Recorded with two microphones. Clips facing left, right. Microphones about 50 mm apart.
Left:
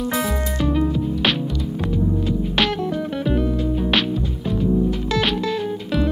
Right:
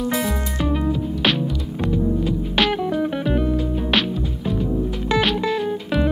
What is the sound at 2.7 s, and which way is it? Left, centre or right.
Music, centre.